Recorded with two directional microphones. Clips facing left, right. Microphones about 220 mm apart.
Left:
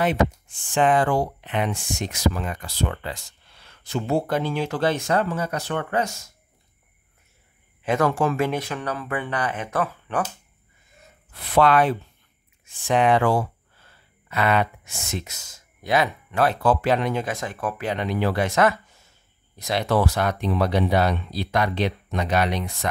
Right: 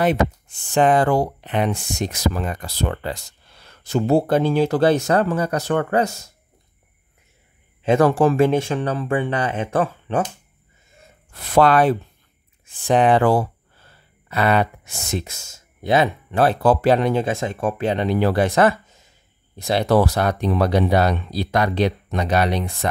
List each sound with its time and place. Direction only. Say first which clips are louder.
0.7 s speech: right 3 dB; 40° right (ahead or behind)
7.8 s speech: right 6 dB; 30° right (ahead or behind)
11.3 s speech: right 3 dB; 45° right (ahead or behind)
18.9 s a sound: right 3 dB; 20° right (ahead or behind)
19.6 s speech: right 5 dB; 30° right (ahead or behind)